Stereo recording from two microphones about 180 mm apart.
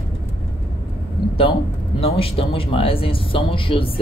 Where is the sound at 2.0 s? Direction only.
30° left (ahead or behind).